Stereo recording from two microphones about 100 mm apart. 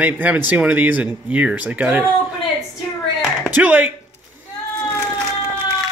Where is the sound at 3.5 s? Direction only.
15° right (ahead or behind).